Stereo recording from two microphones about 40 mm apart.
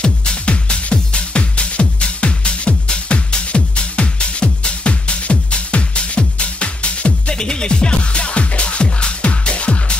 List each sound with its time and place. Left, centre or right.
0.0 s music: left